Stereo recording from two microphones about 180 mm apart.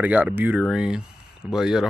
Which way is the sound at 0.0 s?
10° right (ahead or behind).